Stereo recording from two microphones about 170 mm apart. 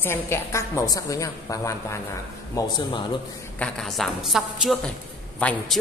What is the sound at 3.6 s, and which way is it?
A woman's voice, centre (ahead or behind).